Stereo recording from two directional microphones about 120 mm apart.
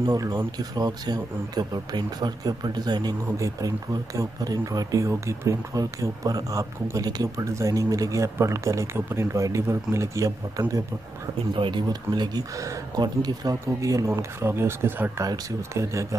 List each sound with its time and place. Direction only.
0.0 s speech: 35° right (ahead or behind)